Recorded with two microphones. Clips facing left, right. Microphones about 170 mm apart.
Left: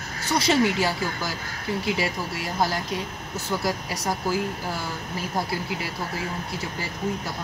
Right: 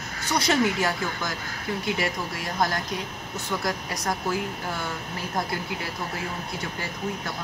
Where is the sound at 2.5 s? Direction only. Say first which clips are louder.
Left 1 dB; 5° left (ahead or behind).